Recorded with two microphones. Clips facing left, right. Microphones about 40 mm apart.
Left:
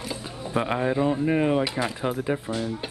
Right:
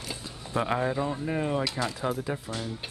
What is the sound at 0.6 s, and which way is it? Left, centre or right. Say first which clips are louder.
Speech: left 5 dB; centre.